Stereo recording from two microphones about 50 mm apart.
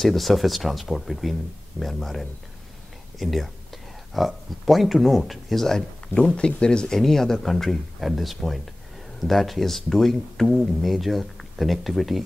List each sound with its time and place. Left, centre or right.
0.0 s speech: centre
6.2 s speech: centre
7.0 s speech: centre